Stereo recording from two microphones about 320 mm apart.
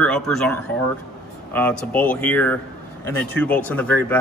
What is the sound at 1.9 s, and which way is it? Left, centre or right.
Speech, centre.